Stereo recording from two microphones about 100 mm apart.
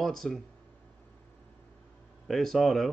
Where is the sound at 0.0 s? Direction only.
5° left (ahead or behind).